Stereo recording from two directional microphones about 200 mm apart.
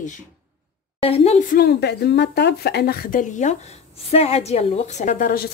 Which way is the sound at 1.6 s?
55° left (ahead or behind).